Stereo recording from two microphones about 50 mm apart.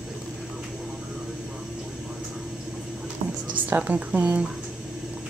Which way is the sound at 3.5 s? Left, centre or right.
Right.